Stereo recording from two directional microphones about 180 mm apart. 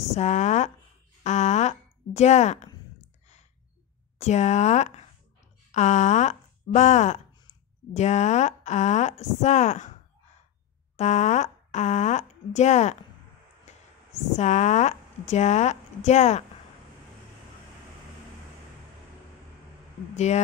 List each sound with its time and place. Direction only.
0.1 s a woman's voice: 40° left (ahead or behind)
4.2 s a woman's voice: 40° left (ahead or behind)
11.0 s a woman's voice: 40° left (ahead or behind)
14.3 s a woman's voice: 40° left (ahead or behind)